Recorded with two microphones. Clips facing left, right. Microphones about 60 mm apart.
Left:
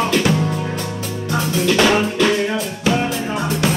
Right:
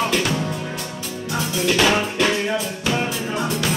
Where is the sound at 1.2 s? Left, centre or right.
Left.